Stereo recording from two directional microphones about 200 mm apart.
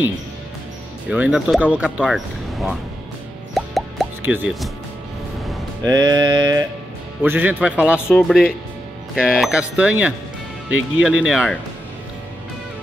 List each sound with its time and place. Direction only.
1.1 s speech: 5° right (ahead or behind)
3.5 s plop: centre (ahead or behind)
4.2 s speech: 5° right (ahead or behind)
5.9 s music: 20° right (ahead or behind)
7.2 s speech: 10° right (ahead or behind)